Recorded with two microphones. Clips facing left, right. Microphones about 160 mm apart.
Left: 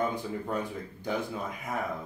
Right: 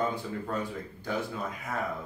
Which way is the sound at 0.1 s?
15° left (ahead or behind).